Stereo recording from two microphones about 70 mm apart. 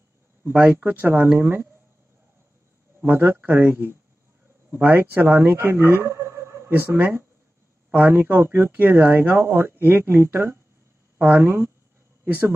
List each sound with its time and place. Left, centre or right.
0.5 s speech: right
3.0 s a man's voice: right
7.0 s speech: right